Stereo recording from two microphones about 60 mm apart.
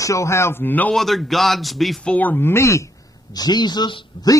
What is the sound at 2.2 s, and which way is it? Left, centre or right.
Speech, left.